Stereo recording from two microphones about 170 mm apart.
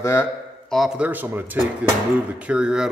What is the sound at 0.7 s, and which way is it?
Mantra, centre (ahead or behind).